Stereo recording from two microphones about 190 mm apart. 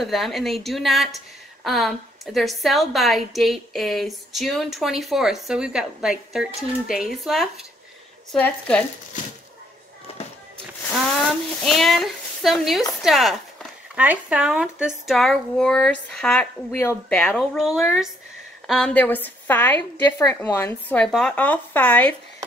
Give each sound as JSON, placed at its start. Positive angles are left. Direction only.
{"t": 0.0, "sound": "speech", "side_deg": 0}
{"t": 11.2, "sound": "a woman's voice", "side_deg": 0}